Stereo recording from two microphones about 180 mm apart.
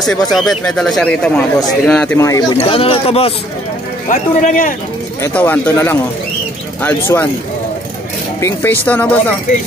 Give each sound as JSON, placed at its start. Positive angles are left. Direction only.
{"t": 0.3, "sound": "speech", "side_deg": 0}
{"t": 2.1, "sound": "speech", "side_deg": 15}
{"t": 2.5, "sound": "speech", "side_deg": 30}
{"t": 4.1, "sound": "speech", "side_deg": 45}
{"t": 5.2, "sound": "speech", "side_deg": 10}
{"t": 8.4, "sound": "speech", "side_deg": 15}